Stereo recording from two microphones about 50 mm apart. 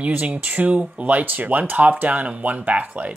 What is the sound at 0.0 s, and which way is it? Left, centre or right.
Speech, right.